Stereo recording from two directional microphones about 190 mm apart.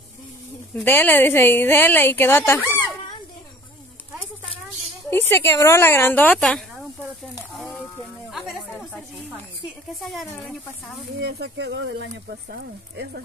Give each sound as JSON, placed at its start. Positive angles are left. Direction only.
{"t": 0.8, "sound": "speech", "side_deg": 10}
{"t": 5.1, "sound": "speech", "side_deg": 10}
{"t": 7.5, "sound": "a sound", "side_deg": 0}
{"t": 10.1, "sound": "speech", "side_deg": 0}
{"t": 11.1, "sound": "speech", "side_deg": -60}